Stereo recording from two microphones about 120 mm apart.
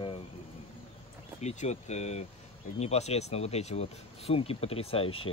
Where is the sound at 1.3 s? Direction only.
65° left (ahead or behind).